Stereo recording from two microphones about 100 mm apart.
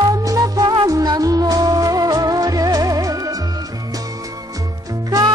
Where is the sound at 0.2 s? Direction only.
35° right (ahead or behind).